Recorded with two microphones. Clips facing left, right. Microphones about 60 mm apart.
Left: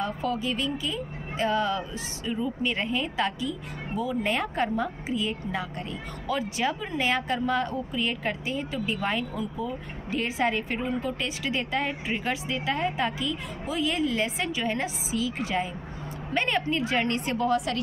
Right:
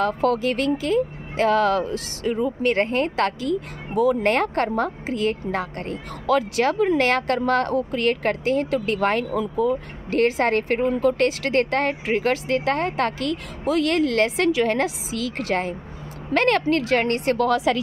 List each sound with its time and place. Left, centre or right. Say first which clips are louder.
0.0 s speech: right 8 dB; right
2.3 s speech: right 8 dB; right
16.3 s speech: right 7 dB; right